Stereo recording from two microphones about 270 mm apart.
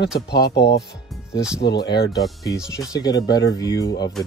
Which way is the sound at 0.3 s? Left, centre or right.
Left.